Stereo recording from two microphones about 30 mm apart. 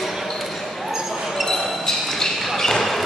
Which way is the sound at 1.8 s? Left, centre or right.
Centre.